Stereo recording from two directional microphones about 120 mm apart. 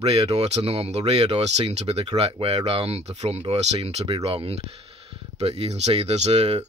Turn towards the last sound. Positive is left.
turn(degrees=-55)  # may be behind; listen again after turning